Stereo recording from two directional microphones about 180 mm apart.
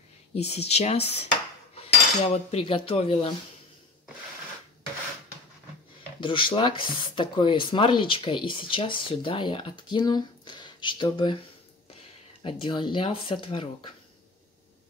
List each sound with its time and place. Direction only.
0.3 s speech: 35° left (ahead or behind)
1.8 s cutlery: 35° left (ahead or behind)
6.2 s speech: 30° left (ahead or behind)
12.4 s speech: 30° left (ahead or behind)